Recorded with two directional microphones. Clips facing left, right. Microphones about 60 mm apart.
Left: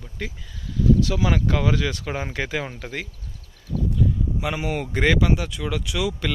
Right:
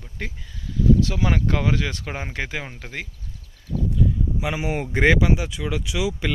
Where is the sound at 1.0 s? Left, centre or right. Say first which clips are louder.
Left 1 dB; right.